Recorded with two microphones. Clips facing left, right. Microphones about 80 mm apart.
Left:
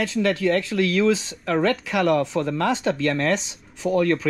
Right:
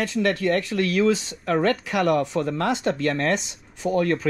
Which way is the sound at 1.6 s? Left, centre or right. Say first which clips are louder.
Left 1 dB; right.